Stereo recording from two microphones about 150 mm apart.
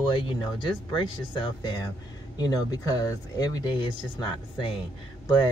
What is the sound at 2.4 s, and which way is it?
Speech, 25° left (ahead or behind).